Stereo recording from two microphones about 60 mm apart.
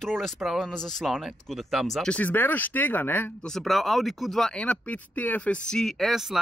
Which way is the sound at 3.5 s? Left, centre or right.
Centre.